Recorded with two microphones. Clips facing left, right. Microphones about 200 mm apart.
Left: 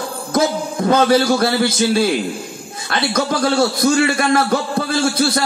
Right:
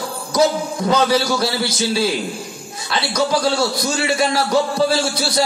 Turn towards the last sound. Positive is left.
turn(degrees=55)  # may be behind; listen again after turning